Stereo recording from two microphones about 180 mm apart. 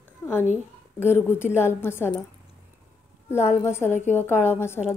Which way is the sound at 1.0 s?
15° left (ahead or behind).